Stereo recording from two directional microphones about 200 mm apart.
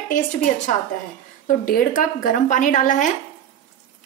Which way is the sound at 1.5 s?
45° left (ahead or behind).